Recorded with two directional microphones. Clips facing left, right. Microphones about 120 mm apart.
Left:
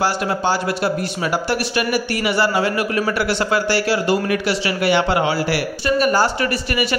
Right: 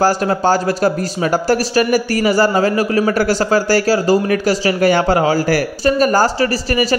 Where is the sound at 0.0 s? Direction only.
40° right (ahead or behind).